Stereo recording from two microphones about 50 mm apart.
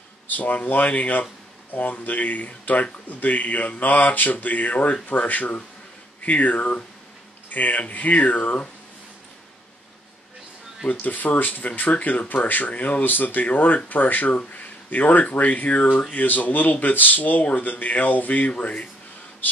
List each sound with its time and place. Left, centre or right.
0.3 s speech: left
10.9 s speech: left